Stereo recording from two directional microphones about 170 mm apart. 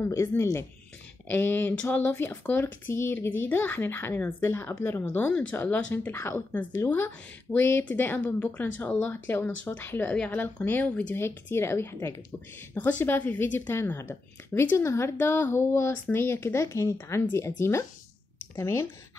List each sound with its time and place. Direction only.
0.0 s speech: 15° left (ahead or behind)